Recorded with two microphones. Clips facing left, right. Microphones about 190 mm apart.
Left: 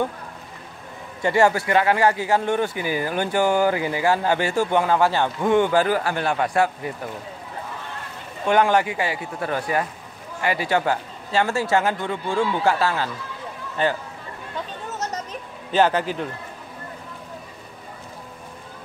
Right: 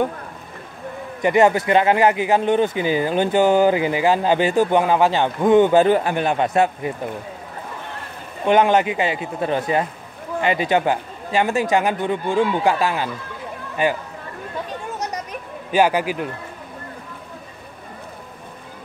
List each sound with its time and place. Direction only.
1.2 s speech: 20° right (ahead or behind)
8.5 s speech: 20° right (ahead or behind)
14.9 s a sound: 10° right (ahead or behind)
15.7 s speech: 10° right (ahead or behind)